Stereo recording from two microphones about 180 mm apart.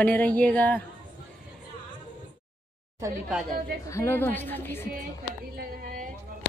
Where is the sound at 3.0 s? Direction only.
20° right (ahead or behind).